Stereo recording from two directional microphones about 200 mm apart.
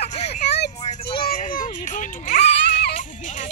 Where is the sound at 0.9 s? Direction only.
25° left (ahead or behind).